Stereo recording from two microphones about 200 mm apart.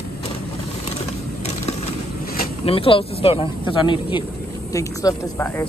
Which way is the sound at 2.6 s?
30° left (ahead or behind).